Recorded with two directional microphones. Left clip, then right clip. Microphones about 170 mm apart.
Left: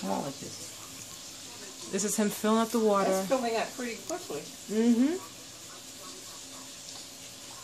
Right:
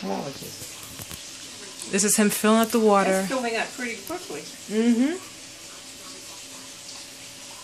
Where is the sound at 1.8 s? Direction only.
25° right (ahead or behind).